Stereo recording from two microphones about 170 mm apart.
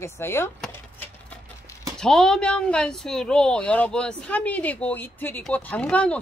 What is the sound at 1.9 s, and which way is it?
Speech, 5° left (ahead or behind).